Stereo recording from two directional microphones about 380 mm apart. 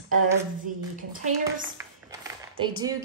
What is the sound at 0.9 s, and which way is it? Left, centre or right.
Speech, right.